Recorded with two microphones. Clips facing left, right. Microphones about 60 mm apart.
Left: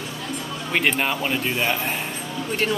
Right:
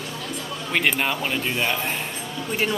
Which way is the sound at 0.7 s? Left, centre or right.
Centre.